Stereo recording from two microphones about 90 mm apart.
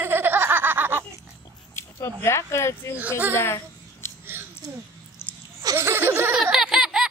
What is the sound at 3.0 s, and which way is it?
Speech, 20° right (ahead or behind).